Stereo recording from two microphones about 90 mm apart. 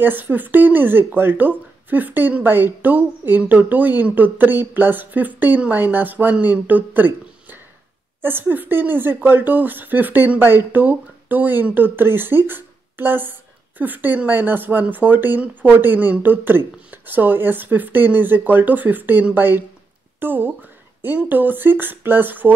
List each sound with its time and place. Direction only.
0.0 s speech: 20° right (ahead or behind)
8.2 s speech: 25° right (ahead or behind)